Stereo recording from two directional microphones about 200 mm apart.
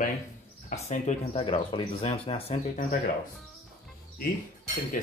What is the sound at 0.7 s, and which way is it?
Speech, 35° left (ahead or behind).